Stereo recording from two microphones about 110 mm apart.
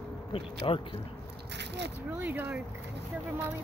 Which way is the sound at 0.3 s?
55° left (ahead or behind).